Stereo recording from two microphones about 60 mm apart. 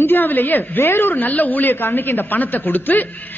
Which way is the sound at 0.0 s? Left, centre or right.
Left.